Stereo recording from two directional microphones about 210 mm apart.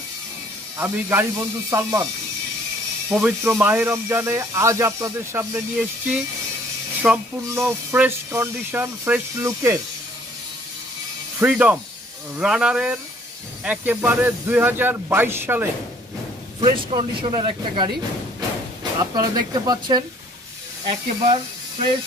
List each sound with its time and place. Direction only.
0.7 s speech: 10° right (ahead or behind)
3.1 s speech: 10° right (ahead or behind)
11.3 s speech: 5° right (ahead or behind)
16.6 s speech: 25° right (ahead or behind)
18.9 s speech: 20° right (ahead or behind)